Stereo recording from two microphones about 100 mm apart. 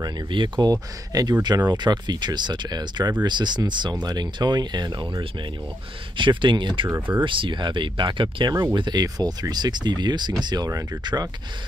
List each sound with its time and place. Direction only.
0.0 s speech: 50° right (ahead or behind)
6.1 s speech: 55° right (ahead or behind)
6.9 s speech: 20° right (ahead or behind)
7.2 s speech: 55° right (ahead or behind); by 11.0 s 35° right (ahead or behind)